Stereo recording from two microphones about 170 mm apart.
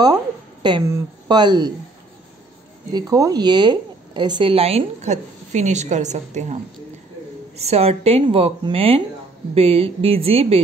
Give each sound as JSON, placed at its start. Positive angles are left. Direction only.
{"t": 0.6, "sound": "a sound", "side_deg": -30}
{"t": 1.3, "sound": "speech", "side_deg": -25}
{"t": 2.9, "sound": "a woman's voice", "side_deg": -20}